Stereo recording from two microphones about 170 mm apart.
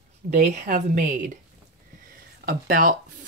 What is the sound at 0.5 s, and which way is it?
Speech, 50° right (ahead or behind).